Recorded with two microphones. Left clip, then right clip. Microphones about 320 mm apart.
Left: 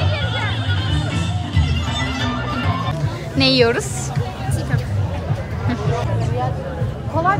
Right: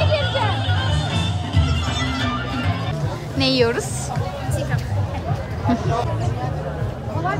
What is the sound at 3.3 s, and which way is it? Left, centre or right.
Speech, centre.